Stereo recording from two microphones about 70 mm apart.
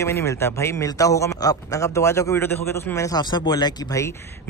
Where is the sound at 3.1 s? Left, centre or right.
Left.